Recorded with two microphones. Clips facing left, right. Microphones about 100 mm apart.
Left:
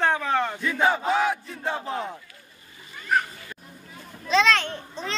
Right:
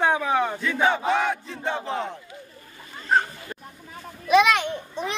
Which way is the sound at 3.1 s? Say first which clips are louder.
Right 2 dB; 30° right (ahead or behind).